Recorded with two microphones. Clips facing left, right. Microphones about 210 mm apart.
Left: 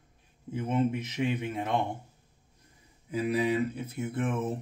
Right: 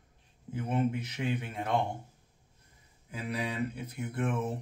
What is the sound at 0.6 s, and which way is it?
Speech, 20° left (ahead or behind).